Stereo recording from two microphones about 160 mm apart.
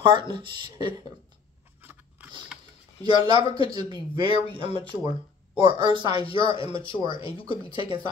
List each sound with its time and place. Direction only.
0.3 s speech: 30° right (ahead or behind)
1.8 s biting: 10° right (ahead or behind)
2.5 s a sound: 5° right (ahead or behind)
3.1 s speech: 30° right (ahead or behind)
6.2 s speech: 35° left (ahead or behind)